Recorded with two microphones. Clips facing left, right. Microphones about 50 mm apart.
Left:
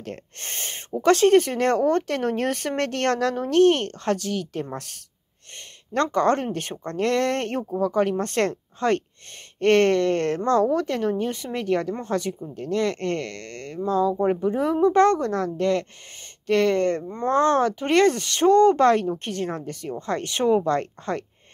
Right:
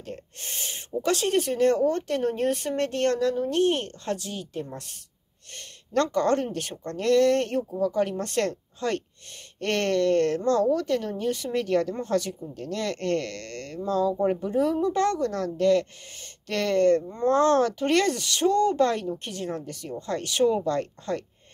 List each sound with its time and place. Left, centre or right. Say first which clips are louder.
0.0 s speech: left 3 dB; left
5.9 s speech: left 2 dB; left
14.5 s speech: left 4 dB; left